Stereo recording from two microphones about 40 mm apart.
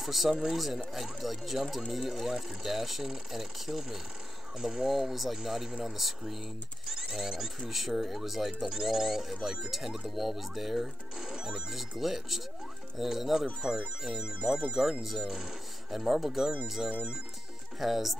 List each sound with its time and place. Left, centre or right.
0.0 s speech: centre
4.9 s speech: centre
6.9 s speech: centre
17.7 s speech: centre